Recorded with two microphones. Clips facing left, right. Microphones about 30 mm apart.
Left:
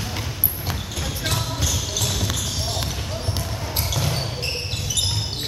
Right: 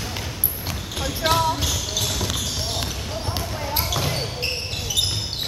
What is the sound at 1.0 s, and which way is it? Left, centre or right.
Basketball bounce, centre.